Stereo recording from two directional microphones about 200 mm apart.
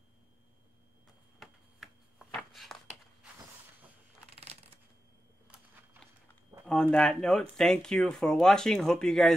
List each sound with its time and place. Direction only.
1.4 s shuffling cards: centre (ahead or behind)
4.4 s shuffling cards: 30° right (ahead or behind)
6.6 s speech: 5° left (ahead or behind)